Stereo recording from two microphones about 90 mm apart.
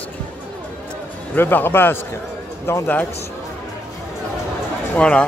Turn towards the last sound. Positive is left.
turn(degrees=10)  # may be behind; listen again after turning